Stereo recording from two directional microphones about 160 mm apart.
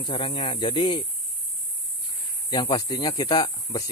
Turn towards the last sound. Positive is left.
turn(degrees=25)  # may be behind; listen again after turning